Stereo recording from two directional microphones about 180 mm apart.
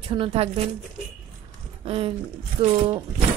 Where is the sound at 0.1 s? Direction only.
30° right (ahead or behind).